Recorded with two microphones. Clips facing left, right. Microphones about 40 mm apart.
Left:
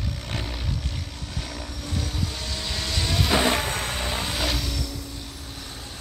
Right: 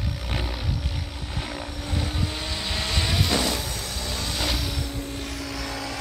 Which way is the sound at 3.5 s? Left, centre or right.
Left.